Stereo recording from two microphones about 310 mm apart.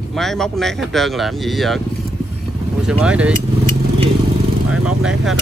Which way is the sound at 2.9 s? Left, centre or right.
Centre.